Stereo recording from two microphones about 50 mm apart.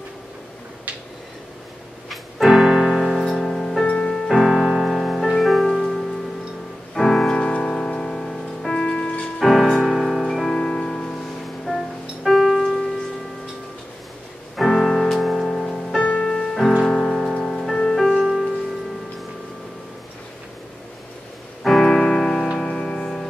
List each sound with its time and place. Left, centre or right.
2.0 s piano: centre
3.3 s music: centre
4.3 s music: centre
8.7 s music: centre
9.4 s music: centre
14.6 s music: centre
16.0 s music: left
16.3 s music: centre
18.2 s music: centre
21.6 s music: centre